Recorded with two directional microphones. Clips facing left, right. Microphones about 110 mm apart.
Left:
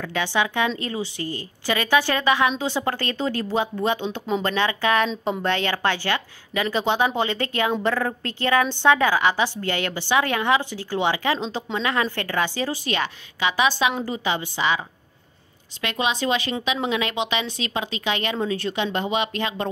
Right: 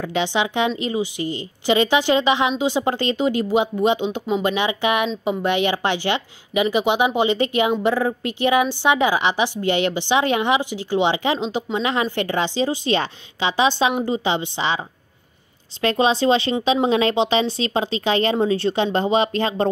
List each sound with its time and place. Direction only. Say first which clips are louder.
0.0 s a woman's voice: right 2 dB; 20° right (ahead or behind)
15.8 s speech: right 7 dB; 35° right (ahead or behind)